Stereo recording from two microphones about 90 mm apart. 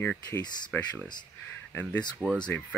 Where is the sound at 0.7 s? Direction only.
25° left (ahead or behind).